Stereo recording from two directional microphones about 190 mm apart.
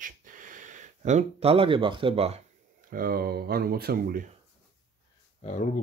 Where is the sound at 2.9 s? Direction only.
50° right (ahead or behind).